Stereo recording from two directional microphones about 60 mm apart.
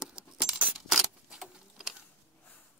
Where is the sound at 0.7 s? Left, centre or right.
Centre.